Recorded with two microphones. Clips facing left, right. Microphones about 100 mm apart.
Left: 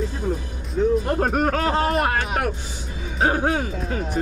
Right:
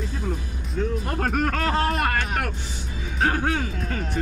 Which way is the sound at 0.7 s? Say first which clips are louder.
Left 7 dB; 15° left (ahead or behind).